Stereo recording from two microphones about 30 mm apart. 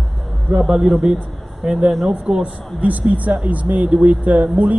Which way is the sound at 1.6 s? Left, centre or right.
Centre.